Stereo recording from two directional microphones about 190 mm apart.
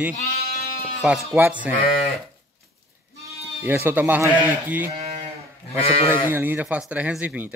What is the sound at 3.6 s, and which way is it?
Speech, 10° right (ahead or behind).